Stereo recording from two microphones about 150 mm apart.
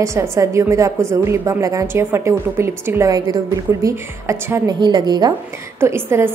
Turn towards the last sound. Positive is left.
turn(degrees=-15)  # may be behind; listen again after turning